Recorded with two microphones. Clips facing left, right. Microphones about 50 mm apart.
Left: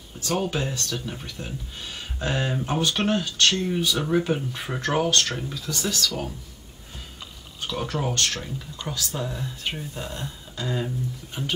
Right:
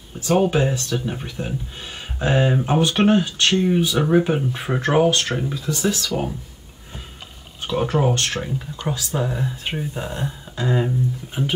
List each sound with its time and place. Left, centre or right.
0.3 s speech: right
7.6 s speech: right